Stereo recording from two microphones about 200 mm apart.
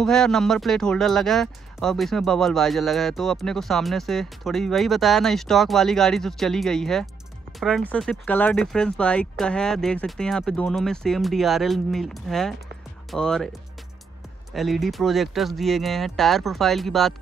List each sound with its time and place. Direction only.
0.0 s speech: 5° left (ahead or behind)